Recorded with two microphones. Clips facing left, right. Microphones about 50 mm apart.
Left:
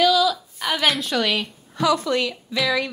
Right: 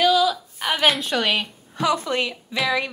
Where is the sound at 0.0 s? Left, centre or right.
Right.